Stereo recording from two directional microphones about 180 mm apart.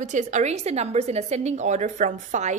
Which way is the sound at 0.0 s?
45° right (ahead or behind).